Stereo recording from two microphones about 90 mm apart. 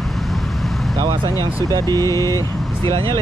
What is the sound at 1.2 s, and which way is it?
Speech, 45° right (ahead or behind).